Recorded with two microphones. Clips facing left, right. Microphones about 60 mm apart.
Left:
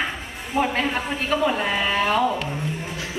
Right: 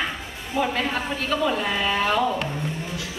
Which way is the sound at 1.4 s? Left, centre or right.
Left.